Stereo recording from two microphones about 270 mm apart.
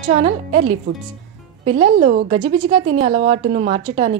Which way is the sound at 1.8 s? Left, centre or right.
Centre.